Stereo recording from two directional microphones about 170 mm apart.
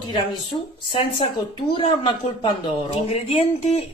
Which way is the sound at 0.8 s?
30° left (ahead or behind).